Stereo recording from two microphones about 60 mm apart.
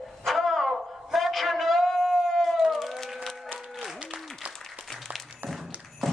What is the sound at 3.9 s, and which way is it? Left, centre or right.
Applause, centre.